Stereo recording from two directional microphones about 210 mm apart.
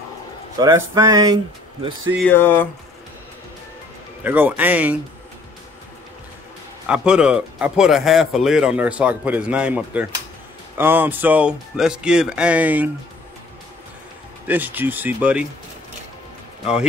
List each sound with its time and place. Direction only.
0.6 s speech: 15° right (ahead or behind)
2.1 s speech: 10° left (ahead or behind)
4.2 s speech: 10° right (ahead or behind)
6.9 s speech: 5° right (ahead or behind)
14.5 s speech: 10° right (ahead or behind)